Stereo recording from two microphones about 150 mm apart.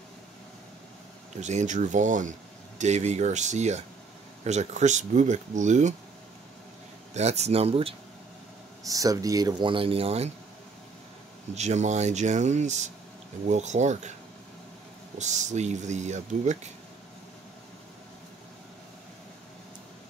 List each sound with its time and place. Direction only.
1.4 s speech: 50° right (ahead or behind)
7.2 s speech: 45° right (ahead or behind)
8.8 s speech: 25° right (ahead or behind); by 10.3 s 45° right (ahead or behind)
11.5 s speech: 50° right (ahead or behind)
15.1 s speech: 50° right (ahead or behind)